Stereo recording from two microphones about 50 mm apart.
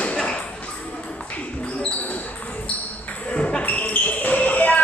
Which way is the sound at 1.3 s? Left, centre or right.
Left.